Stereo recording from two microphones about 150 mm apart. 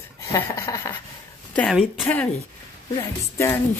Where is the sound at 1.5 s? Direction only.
10° left (ahead or behind).